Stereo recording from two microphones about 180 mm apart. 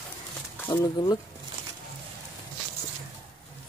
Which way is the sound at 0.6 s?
15° left (ahead or behind).